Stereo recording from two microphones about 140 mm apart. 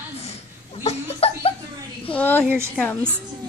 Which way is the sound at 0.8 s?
45° left (ahead or behind).